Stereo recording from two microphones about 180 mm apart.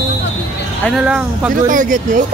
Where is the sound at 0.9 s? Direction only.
5° right (ahead or behind).